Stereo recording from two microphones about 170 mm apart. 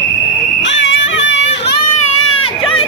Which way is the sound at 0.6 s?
90° left.